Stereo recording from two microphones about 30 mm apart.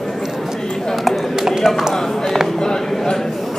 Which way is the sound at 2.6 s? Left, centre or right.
Centre.